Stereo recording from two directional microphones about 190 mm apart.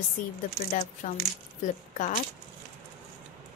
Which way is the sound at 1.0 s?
45° left (ahead or behind).